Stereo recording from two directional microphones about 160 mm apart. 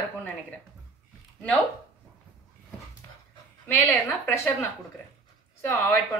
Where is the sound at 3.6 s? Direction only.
10° left (ahead or behind).